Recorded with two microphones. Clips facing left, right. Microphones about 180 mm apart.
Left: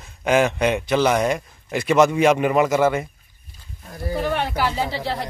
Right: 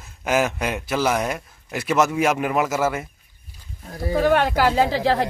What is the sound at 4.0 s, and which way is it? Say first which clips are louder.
Speech: right 5 dB; 90° right.